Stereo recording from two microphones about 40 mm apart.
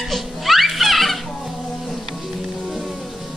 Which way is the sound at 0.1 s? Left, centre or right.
Centre.